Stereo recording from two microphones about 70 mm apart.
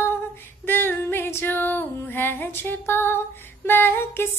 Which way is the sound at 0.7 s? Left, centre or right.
Left.